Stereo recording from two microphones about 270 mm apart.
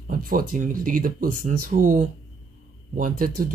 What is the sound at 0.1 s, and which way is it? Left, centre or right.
Speech, right.